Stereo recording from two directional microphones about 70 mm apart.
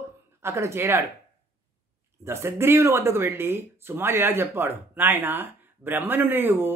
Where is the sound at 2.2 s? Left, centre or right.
Right.